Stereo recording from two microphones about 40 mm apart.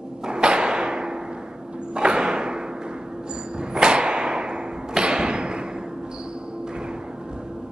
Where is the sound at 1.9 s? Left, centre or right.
Right.